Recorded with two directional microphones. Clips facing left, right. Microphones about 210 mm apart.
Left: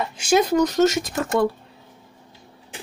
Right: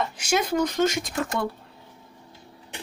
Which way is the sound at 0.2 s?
35° left (ahead or behind).